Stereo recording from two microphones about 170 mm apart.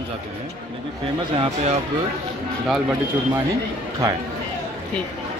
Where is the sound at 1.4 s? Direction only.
40° right (ahead or behind).